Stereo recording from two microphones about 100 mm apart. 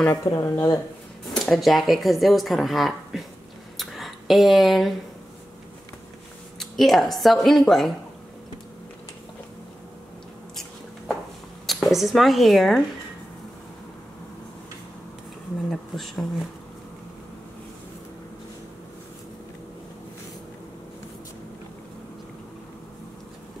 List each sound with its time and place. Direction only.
0.2 s speech: 30° left (ahead or behind)
1.3 s speech: centre (ahead or behind)
3.7 s a sound: centre (ahead or behind)
6.6 s speech: centre (ahead or behind)
11.6 s speech: centre (ahead or behind)
15.7 s speech: centre (ahead or behind)